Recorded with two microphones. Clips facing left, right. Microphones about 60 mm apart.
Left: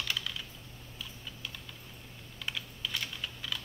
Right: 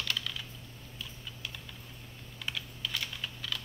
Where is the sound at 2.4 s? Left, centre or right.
Centre.